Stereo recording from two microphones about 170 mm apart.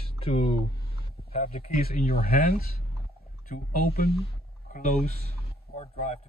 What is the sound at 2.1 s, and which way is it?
Speech, 65° left (ahead or behind).